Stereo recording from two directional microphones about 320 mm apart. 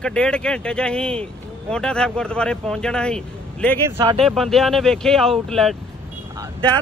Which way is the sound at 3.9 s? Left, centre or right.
Centre.